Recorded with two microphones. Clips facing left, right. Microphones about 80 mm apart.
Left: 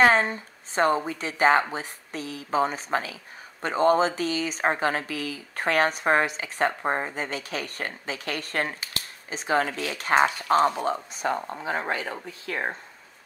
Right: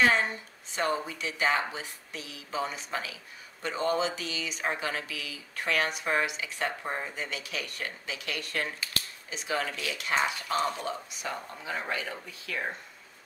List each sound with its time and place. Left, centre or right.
0.0 s speech: left